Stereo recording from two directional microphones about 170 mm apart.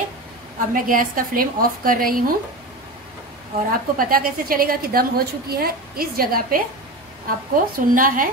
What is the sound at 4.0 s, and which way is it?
A woman's voice, 60° right (ahead or behind).